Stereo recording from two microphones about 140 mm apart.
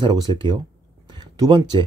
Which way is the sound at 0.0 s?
35° right (ahead or behind).